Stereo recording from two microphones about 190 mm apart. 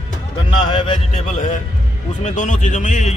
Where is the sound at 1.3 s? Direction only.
40° left (ahead or behind).